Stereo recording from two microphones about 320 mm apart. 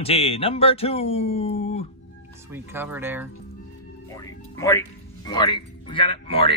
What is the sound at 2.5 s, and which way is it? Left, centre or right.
Speech, centre.